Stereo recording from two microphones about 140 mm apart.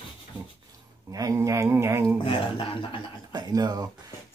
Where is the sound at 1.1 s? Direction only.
25° right (ahead or behind).